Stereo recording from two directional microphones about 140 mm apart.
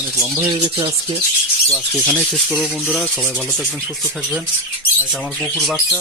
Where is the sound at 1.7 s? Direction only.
10° left (ahead or behind).